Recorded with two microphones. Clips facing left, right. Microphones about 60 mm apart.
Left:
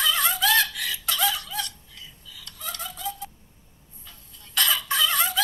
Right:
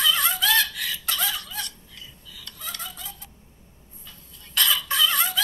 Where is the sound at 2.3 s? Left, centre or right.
Right.